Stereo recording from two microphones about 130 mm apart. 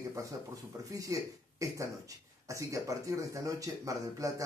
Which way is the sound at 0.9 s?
25° right (ahead or behind).